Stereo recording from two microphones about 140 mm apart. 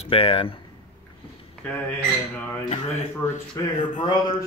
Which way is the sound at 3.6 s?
25° left (ahead or behind).